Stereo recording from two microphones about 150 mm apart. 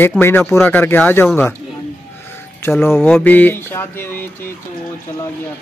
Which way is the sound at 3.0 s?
5° left (ahead or behind).